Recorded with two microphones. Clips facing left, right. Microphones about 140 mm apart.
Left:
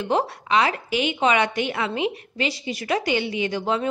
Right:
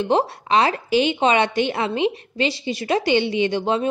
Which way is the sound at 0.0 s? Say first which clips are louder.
Right 3 dB; 30° right (ahead or behind).